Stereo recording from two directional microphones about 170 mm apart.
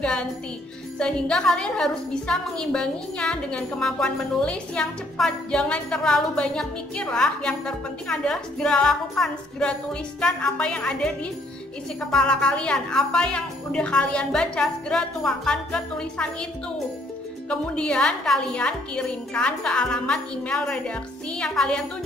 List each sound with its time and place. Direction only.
0.0 s a woman's voice: 5° left (ahead or behind)
12.1 s a woman's voice: 5° left (ahead or behind)
17.5 s a woman's voice: 5° left (ahead or behind)